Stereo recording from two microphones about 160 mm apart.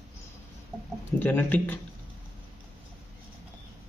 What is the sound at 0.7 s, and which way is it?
Chicken, 5° right (ahead or behind).